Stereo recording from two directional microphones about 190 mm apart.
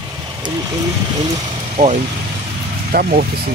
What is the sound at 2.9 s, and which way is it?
Speech, 50° right (ahead or behind).